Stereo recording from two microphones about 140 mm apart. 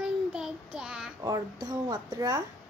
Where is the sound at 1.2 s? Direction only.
25° right (ahead or behind).